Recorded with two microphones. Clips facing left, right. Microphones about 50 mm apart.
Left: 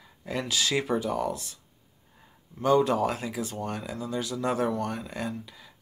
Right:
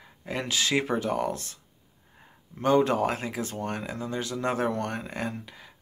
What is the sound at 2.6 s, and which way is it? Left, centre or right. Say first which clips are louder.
Speech: even; right.